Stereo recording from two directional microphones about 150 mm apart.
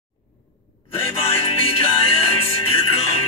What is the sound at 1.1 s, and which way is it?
Music, 40° left (ahead or behind).